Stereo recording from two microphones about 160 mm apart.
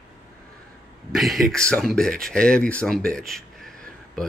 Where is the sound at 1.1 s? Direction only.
Centre (ahead or behind).